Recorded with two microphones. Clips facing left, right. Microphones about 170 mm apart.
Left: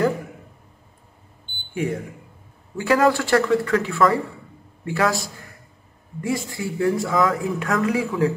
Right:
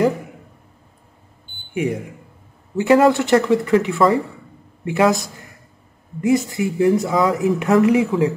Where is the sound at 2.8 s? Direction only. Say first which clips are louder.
Right 5 dB; 20° right (ahead or behind).